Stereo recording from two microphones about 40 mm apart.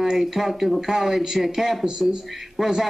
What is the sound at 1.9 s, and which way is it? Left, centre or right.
Speech, centre.